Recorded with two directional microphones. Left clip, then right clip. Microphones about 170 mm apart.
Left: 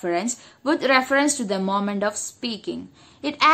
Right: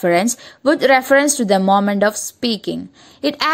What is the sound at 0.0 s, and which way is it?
Speech, 40° right (ahead or behind).